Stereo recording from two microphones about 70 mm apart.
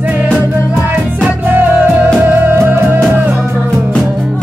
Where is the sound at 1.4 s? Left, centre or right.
Right.